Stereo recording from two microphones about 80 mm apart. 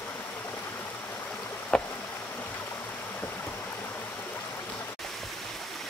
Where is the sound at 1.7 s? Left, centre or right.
Centre.